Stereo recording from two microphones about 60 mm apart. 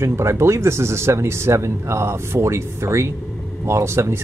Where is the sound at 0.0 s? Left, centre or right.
Right.